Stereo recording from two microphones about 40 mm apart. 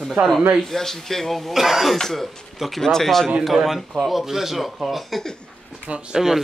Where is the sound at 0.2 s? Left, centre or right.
Right.